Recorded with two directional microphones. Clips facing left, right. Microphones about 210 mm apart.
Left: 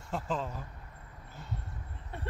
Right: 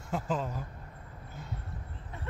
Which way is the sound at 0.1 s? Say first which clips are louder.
Right 2 dB; centre (ahead or behind).